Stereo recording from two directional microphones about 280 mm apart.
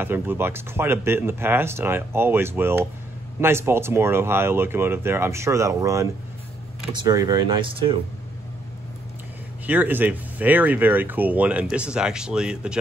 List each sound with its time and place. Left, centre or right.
0.0 s speech: centre
9.7 s speech: centre